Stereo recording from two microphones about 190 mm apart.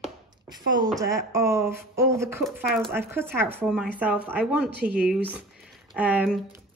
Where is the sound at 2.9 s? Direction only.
10° right (ahead or behind).